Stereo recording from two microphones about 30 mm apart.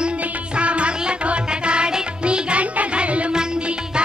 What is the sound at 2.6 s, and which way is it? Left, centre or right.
Music, right.